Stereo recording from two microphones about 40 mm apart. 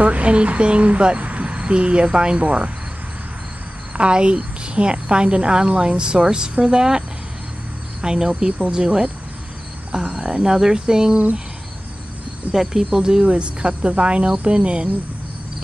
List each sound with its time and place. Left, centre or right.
0.0 s a woman's voice: right
3.9 s a woman's voice: right
12.5 s a woman's voice: centre